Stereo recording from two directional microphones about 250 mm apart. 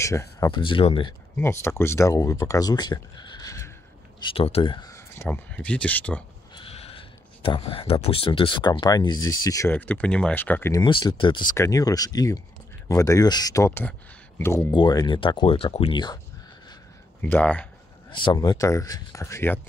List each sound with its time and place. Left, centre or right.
0.0 s speech: centre
1.3 s speech: centre
6.5 s speech: left
17.2 s speech: centre
18.1 s speech: centre